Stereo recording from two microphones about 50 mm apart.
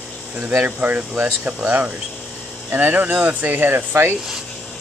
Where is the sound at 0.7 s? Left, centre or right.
Right.